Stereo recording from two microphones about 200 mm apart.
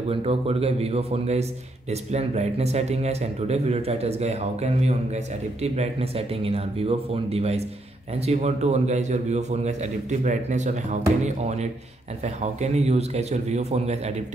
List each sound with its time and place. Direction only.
0.1 s speech: 30° right (ahead or behind)